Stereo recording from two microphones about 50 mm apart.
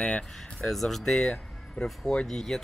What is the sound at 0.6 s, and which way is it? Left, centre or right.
Speech, centre.